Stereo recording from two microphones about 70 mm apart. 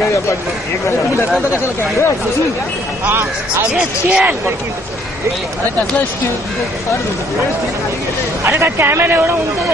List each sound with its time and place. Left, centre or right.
1.5 s speech: left
3.7 s speech: centre
8.5 s speech: right